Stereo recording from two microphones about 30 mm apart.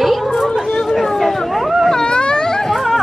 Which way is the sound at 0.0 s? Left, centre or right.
Centre.